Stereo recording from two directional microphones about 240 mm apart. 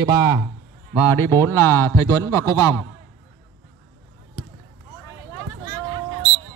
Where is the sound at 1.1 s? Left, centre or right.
Centre.